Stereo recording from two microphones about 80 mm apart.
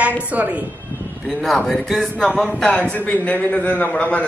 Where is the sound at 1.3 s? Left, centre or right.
Centre.